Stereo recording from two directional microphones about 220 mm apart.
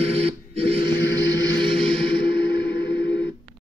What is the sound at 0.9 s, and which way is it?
Vehicle, 50° left (ahead or behind).